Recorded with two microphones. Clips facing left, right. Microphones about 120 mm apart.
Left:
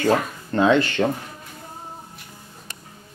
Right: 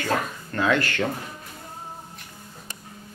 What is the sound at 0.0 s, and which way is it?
Speech, 25° left (ahead or behind).